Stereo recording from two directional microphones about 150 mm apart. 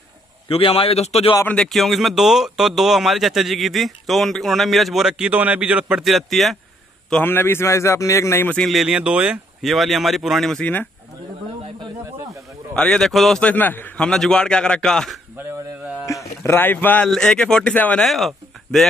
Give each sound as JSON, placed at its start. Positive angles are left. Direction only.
{"t": 0.5, "sound": "a man's voice", "side_deg": 40}
{"t": 1.4, "sound": "speech", "side_deg": 5}
{"t": 7.1, "sound": "speech", "side_deg": 10}
{"t": 12.7, "sound": "speech", "side_deg": 5}
{"t": 16.1, "sound": "speech", "side_deg": 20}